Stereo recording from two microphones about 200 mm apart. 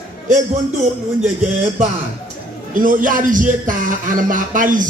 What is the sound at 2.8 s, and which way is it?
Speech, 45° right (ahead or behind).